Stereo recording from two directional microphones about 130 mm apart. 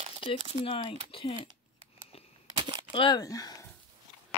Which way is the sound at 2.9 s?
35° left (ahead or behind).